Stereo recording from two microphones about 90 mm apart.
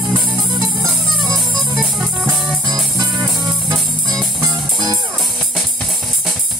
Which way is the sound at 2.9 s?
45° right (ahead or behind).